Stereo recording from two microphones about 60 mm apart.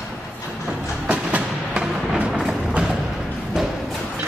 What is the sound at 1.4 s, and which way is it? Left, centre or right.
Music, centre.